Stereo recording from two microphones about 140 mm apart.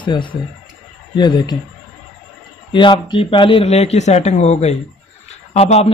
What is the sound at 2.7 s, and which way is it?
Speech, 35° left (ahead or behind).